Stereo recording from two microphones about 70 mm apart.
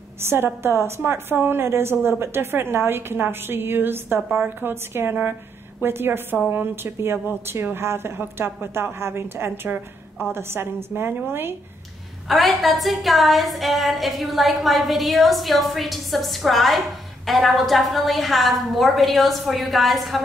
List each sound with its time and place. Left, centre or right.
0.2 s a woman's voice: right
12.3 s a woman's voice: centre